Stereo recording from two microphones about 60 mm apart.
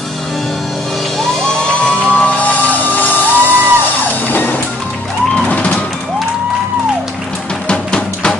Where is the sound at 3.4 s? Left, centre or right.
Right.